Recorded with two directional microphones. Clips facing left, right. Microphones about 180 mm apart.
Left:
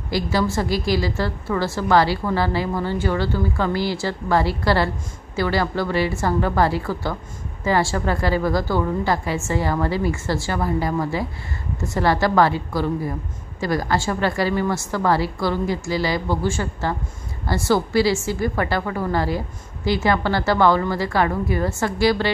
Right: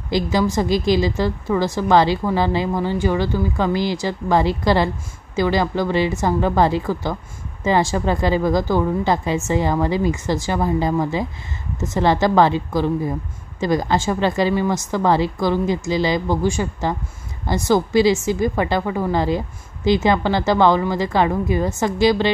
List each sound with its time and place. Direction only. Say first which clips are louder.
0.1 s a woman's voice: right 3 dB; 15° right (ahead or behind)